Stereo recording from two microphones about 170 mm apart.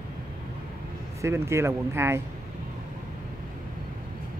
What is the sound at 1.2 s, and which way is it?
Speech, 15° right (ahead or behind).